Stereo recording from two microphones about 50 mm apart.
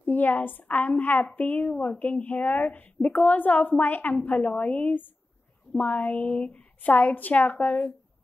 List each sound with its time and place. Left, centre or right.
0.0 s speech: left